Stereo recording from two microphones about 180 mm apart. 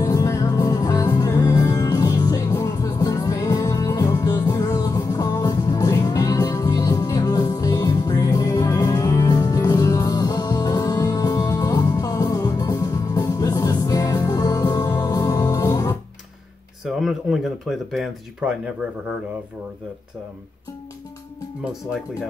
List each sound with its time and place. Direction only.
0.0 s music: 20° left (ahead or behind)
16.8 s speech: centre (ahead or behind)